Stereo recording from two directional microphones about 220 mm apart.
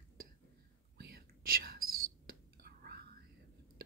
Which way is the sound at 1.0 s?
45° right (ahead or behind).